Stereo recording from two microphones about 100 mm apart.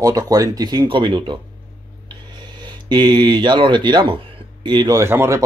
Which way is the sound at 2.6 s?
50° right (ahead or behind).